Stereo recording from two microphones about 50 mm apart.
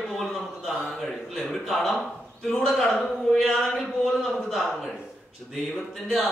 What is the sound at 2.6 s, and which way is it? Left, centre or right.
A man's voice, centre.